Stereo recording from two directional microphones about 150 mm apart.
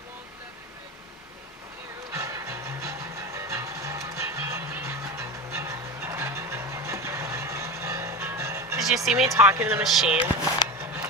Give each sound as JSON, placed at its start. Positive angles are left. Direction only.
{"t": 2.1, "sound": "music", "side_deg": -20}
{"t": 8.7, "sound": "speech", "side_deg": 0}
{"t": 9.3, "sound": "speech", "side_deg": -15}